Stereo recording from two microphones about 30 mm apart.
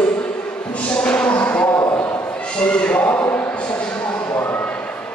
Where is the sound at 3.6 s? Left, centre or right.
Left.